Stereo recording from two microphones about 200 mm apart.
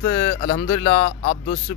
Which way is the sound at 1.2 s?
40° left (ahead or behind).